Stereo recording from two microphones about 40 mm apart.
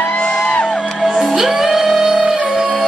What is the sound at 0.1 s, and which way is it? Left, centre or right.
Music, left.